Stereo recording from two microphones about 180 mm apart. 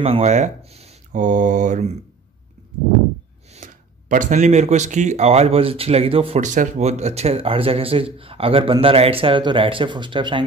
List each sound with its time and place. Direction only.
0.0 s speech: 35° right (ahead or behind)
3.5 s speech: 45° right (ahead or behind); by 10.4 s 25° right (ahead or behind)